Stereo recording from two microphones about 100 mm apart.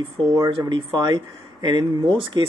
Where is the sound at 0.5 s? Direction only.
50° right (ahead or behind).